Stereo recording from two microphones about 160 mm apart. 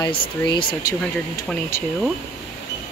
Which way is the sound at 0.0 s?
35° left (ahead or behind).